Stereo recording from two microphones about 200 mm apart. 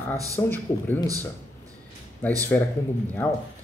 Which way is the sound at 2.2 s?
10° left (ahead or behind).